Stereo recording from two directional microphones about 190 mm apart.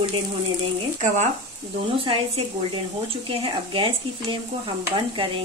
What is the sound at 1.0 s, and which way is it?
Frying, 40° right (ahead or behind).